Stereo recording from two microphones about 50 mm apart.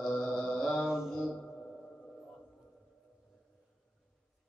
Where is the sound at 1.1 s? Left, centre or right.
Centre.